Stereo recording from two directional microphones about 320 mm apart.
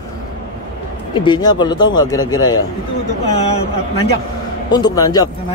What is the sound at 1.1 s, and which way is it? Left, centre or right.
Speech, centre.